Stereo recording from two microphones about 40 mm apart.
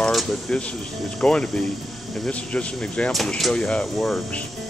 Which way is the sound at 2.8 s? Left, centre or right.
Centre.